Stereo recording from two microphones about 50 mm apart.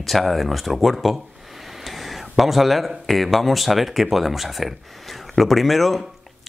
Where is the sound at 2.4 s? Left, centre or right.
Centre.